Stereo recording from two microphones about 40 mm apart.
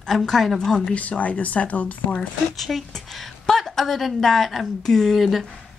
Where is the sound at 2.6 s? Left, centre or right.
Centre.